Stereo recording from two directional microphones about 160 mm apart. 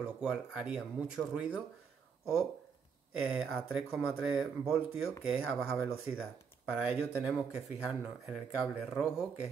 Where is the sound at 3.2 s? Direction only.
5° right (ahead or behind).